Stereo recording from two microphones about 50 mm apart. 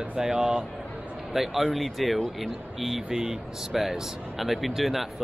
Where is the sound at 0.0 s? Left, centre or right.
Right.